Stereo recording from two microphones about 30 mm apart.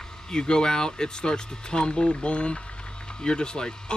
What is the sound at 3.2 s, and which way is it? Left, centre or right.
Speech, left.